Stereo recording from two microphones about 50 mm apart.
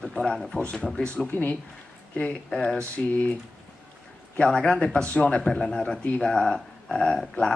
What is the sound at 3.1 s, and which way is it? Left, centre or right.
Speech, left.